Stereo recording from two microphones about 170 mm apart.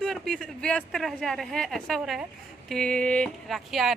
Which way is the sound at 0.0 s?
Centre (ahead or behind).